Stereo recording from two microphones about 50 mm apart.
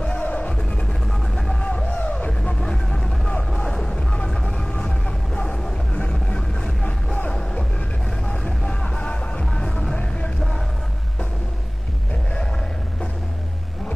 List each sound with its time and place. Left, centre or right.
0.2 s music: left
1.9 s music: left
9.5 s music: centre